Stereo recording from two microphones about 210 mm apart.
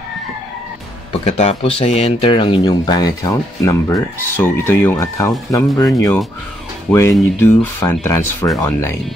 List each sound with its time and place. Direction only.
1.1 s speech: 30° left (ahead or behind); by 8.9 s 10° left (ahead or behind)